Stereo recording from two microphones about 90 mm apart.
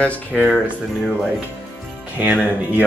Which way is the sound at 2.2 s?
15° right (ahead or behind).